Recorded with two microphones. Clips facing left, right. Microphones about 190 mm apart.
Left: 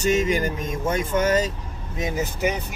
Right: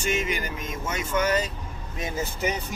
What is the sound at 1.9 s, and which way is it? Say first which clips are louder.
Speech: left 4 dB; 15° left (ahead or behind).